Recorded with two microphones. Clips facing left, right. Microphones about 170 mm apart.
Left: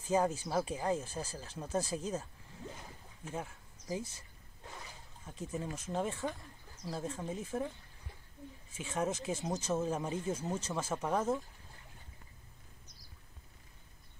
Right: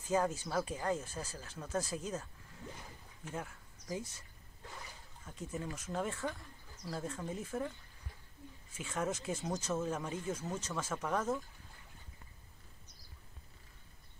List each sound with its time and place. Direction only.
0.1 s speech: 25° left (ahead or behind)
3.3 s speech: 25° left (ahead or behind)
5.2 s speech: 25° left (ahead or behind)
8.7 s speech: 25° left (ahead or behind)